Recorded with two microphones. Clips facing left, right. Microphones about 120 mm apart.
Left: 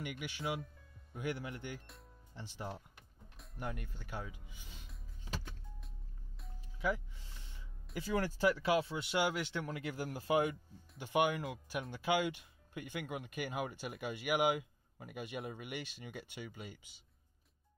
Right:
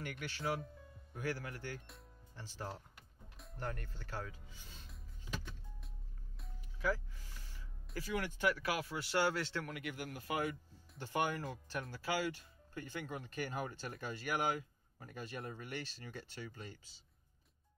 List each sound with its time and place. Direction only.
0.0 s a man's voice: 15° left (ahead or behind)
6.8 s speech: 20° left (ahead or behind)
9.7 s a man's voice: 30° left (ahead or behind)
10.5 s speech: 15° left (ahead or behind)